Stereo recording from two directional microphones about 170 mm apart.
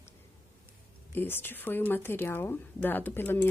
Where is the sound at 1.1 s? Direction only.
10° left (ahead or behind).